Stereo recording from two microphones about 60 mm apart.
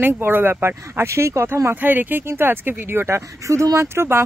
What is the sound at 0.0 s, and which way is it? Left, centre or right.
Speech, right.